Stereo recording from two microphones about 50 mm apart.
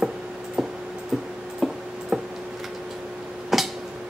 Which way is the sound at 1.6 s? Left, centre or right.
Centre.